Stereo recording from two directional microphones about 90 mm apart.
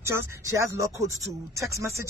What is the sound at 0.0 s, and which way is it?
Speech, 30° right (ahead or behind).